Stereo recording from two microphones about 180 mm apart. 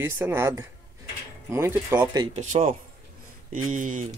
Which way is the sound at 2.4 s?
40° right (ahead or behind).